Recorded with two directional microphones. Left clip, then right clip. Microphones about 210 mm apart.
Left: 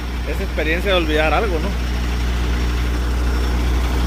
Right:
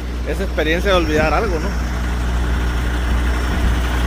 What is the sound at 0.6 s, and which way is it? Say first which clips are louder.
Speech: right 2 dB; 15° right (ahead or behind).